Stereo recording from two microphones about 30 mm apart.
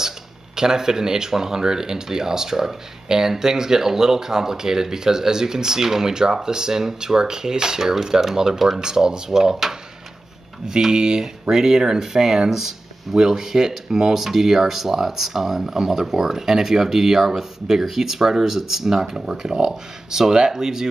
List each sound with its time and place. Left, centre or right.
0.6 s speech: centre